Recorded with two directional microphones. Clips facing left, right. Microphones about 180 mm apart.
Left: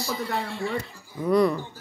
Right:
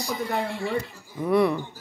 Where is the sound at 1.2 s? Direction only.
Centre (ahead or behind).